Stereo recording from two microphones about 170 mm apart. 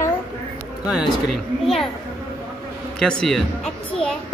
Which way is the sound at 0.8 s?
5° right (ahead or behind).